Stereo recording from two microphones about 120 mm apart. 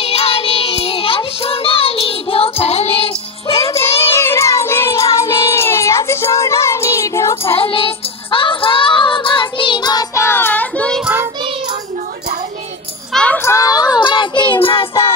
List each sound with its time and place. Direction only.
0.0 s child singing: 55° left (ahead or behind)
3.6 s music: 20° left (ahead or behind)
7.5 s music: 50° left (ahead or behind)
10.1 s child singing: 20° left (ahead or behind)
13.1 s music: 10° left (ahead or behind)
13.4 s child singing: 25° left (ahead or behind); by 15.0 s 45° left (ahead or behind)